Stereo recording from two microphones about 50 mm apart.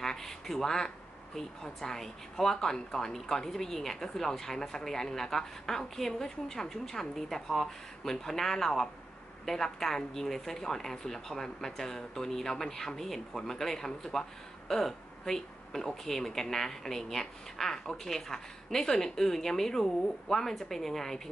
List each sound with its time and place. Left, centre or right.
0.0 s speech: centre